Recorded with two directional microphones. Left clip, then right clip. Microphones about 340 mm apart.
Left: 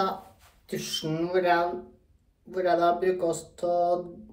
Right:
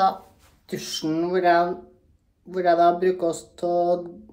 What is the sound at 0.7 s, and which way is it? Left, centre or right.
Speech, right.